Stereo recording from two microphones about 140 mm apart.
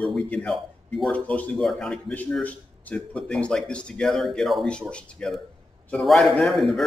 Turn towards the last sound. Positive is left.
turn(degrees=0)  # may be behind; listen again after turning